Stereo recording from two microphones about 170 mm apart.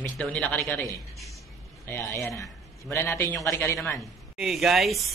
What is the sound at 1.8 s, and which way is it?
Speech, 15° left (ahead or behind).